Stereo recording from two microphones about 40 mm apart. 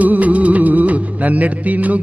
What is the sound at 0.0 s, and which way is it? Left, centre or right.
Music, right.